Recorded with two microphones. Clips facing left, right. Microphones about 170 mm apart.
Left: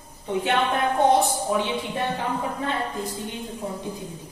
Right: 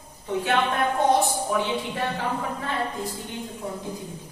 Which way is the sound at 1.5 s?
20° left (ahead or behind).